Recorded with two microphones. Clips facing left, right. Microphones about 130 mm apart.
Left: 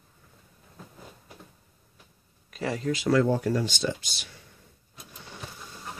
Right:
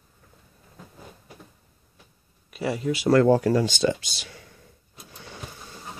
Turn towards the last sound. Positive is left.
turn(degrees=-90)